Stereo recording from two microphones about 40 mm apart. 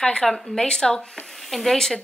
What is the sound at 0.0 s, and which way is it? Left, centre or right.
Speech, left.